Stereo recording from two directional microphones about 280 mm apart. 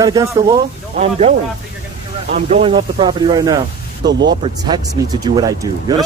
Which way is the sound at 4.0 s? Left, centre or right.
Right.